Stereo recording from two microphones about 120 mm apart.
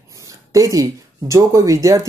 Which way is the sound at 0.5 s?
30° right (ahead or behind).